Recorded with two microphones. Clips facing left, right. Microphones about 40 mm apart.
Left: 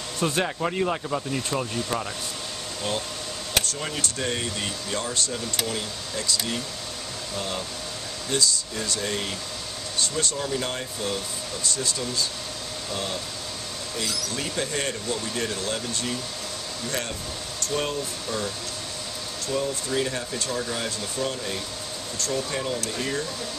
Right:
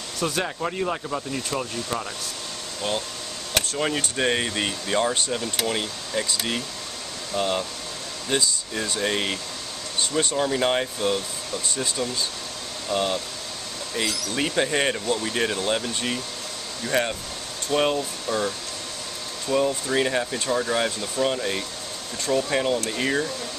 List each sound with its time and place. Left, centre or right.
0.4 s speech: centre
3.7 s speech: right
4.2 s speech: right
14.3 s speech: right
16.8 s speech: right
19.5 s speech: right
22.2 s speech: centre
22.5 s speech: right